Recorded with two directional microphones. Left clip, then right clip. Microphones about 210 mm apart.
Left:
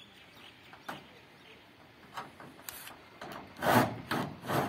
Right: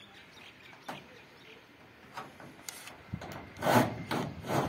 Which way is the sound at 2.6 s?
40° right (ahead or behind).